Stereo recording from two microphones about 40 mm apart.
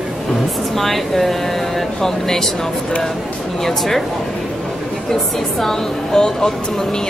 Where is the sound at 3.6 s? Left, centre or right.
Centre.